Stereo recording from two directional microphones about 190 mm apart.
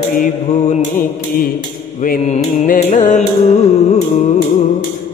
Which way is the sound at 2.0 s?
45° left (ahead or behind).